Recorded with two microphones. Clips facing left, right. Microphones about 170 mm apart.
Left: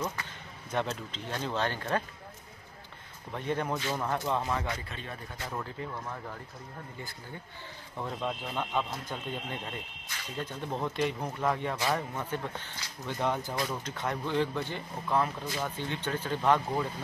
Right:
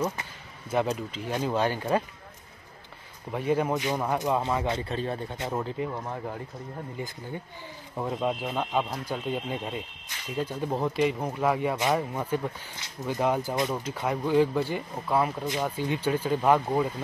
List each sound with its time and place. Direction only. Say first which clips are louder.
0.7 s speech: right 6 dB; 10° right (ahead or behind)
3.3 s speech: right 6 dB; 10° right (ahead or behind)
4.4 s speech: right 5 dB; 25° right (ahead or behind)
8.0 s speech: right 6 dB; 20° right (ahead or behind)
13.5 s speech: right 5 dB; 20° right (ahead or behind)
13.8 s speech: right 5 dB; 10° right (ahead or behind)